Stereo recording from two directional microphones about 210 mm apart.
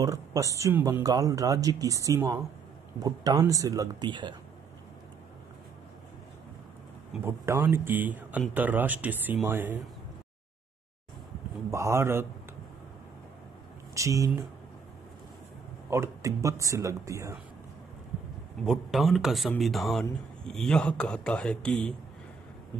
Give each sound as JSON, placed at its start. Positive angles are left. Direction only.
{"t": 0.0, "sound": "speech", "side_deg": -15}
{"t": 7.1, "sound": "speech", "side_deg": -10}
{"t": 11.7, "sound": "speech", "side_deg": -15}
{"t": 13.9, "sound": "speech", "side_deg": -15}
{"t": 15.9, "sound": "speech", "side_deg": -15}
{"t": 18.7, "sound": "a man's voice", "side_deg": 0}